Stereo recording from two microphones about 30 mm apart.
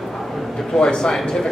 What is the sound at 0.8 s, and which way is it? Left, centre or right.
Speech, left.